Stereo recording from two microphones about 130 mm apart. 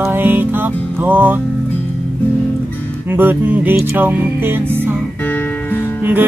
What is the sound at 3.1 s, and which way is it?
Music, 15° right (ahead or behind).